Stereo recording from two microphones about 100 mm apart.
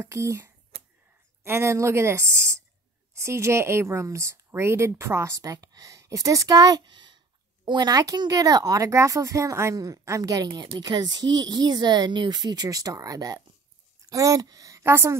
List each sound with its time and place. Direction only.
0.0 s a woman's voice: 30° right (ahead or behind)